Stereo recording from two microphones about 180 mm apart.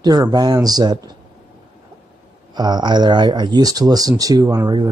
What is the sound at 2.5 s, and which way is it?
Speech, 25° right (ahead or behind).